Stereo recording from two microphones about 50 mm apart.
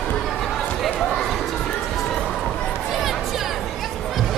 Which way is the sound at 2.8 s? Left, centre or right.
Centre.